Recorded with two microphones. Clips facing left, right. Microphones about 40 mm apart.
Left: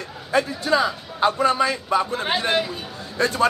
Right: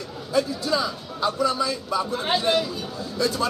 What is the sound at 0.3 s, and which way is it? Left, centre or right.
A man's voice, left.